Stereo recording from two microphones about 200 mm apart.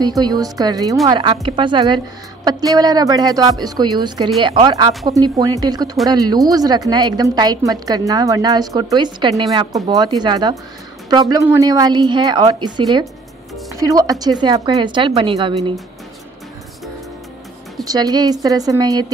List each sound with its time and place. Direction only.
0.0 s a woman's voice: 20° right (ahead or behind)
17.8 s a woman's voice: 20° right (ahead or behind)